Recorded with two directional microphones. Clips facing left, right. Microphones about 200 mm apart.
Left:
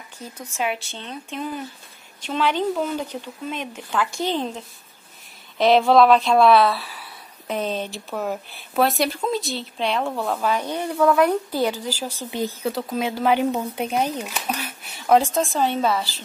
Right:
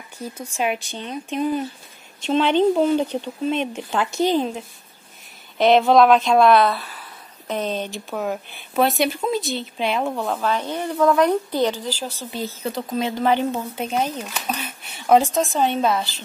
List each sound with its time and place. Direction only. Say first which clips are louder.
0.4 s speech: right 2 dB; 15° right (ahead or behind); by 12.5 s 15° left (ahead or behind)
12.6 s speech: right 3 dB; 5° left (ahead or behind)
15.0 s speech: right 1 dB; 5° right (ahead or behind)